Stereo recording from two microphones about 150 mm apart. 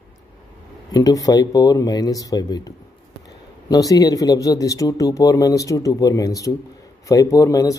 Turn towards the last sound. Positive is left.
turn(degrees=25)  # may be behind; listen again after turning